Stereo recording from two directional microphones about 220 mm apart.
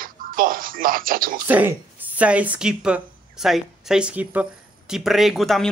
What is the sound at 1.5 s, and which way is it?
A woman's voice, 10° right (ahead or behind).